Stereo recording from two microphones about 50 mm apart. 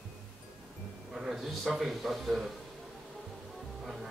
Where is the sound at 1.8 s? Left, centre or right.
Centre.